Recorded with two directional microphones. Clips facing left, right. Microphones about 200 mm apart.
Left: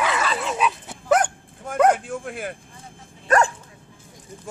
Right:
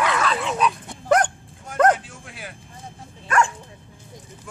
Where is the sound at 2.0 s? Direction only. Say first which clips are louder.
Left 10 dB; 50° left (ahead or behind).